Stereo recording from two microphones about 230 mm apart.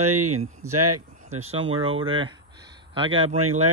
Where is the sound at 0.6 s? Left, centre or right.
Right.